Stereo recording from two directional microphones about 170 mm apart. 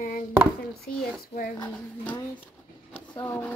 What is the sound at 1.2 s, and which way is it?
Speech, 55° left (ahead or behind).